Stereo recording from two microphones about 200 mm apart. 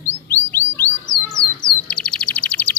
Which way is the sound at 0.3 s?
10° left (ahead or behind).